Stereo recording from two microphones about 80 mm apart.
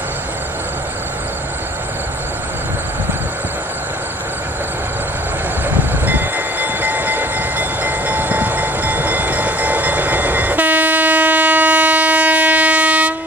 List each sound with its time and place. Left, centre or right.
5.7 s train: right